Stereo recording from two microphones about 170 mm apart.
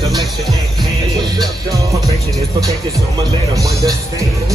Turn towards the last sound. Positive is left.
turn(degrees=-20)  # may be behind; listen again after turning